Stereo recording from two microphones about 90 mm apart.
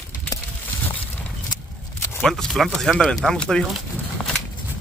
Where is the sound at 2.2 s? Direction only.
5° left (ahead or behind).